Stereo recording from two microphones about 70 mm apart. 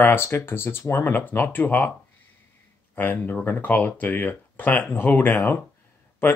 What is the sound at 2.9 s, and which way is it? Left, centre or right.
Speech, left.